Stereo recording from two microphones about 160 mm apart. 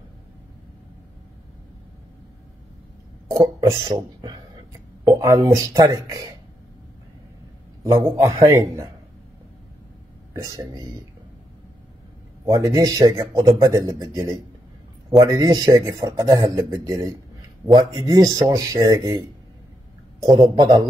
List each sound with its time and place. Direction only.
3.3 s a sound: 15° right (ahead or behind)
5.0 s speech: 20° right (ahead or behind)
8.0 s speech: 20° right (ahead or behind)
10.3 s speech: 20° right (ahead or behind)
12.4 s speech: 20° right (ahead or behind)